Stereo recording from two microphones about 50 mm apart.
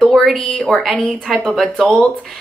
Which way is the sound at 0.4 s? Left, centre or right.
Centre.